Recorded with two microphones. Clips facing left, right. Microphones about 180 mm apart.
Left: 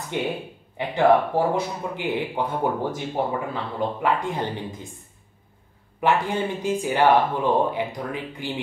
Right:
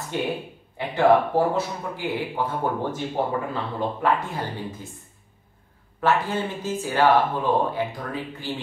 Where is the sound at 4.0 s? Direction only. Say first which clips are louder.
Even; 20° left (ahead or behind).